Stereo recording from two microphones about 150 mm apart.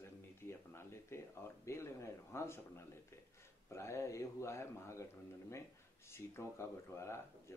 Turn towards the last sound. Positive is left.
turn(degrees=20)  # may be behind; listen again after turning